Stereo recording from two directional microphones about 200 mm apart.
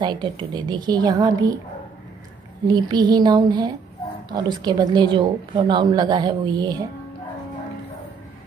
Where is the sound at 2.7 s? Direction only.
20° right (ahead or behind).